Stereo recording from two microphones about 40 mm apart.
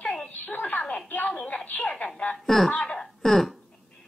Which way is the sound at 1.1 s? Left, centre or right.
Left.